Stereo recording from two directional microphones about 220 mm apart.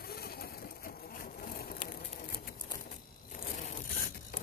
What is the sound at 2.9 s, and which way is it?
Zipper, 40° left (ahead or behind).